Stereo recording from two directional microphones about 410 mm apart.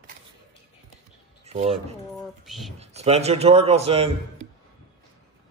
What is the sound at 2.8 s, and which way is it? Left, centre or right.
A man's voice, centre.